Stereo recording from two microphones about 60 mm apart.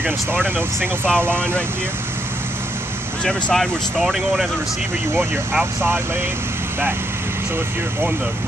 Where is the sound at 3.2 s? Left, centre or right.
Centre.